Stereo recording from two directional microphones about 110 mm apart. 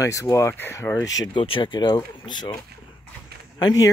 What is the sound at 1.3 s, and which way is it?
Speech, 50° left (ahead or behind).